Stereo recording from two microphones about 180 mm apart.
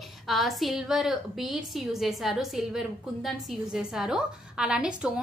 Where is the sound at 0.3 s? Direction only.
Centre (ahead or behind).